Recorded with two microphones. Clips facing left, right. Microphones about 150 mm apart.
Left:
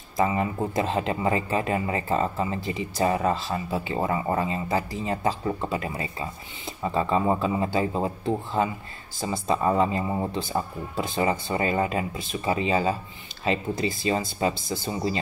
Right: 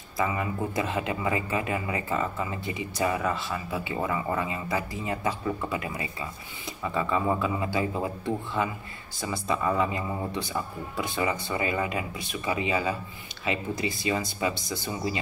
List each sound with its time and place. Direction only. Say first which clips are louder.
0.2 s speech: left 4 dB; 30° left (ahead or behind)
1.2 s speech: left 3 dB; 40° left (ahead or behind)
4.6 s speech: left 3 dB; 25° left (ahead or behind)
5.1 s speech: left 3 dB; 35° left (ahead or behind)